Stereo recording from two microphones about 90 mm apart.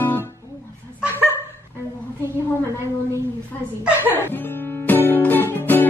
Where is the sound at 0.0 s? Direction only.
20° left (ahead or behind).